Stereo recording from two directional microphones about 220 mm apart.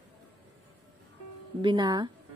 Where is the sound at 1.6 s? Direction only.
20° right (ahead or behind).